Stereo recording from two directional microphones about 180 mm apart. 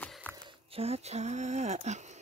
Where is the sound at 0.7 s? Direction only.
35° right (ahead or behind).